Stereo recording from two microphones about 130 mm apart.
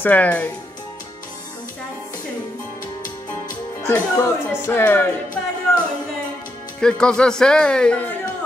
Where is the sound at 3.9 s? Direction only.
20° left (ahead or behind).